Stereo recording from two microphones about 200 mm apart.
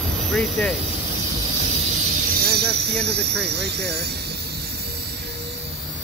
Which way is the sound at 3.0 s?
55° right (ahead or behind).